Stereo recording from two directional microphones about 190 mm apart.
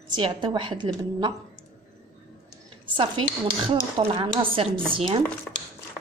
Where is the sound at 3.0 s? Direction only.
25° right (ahead or behind).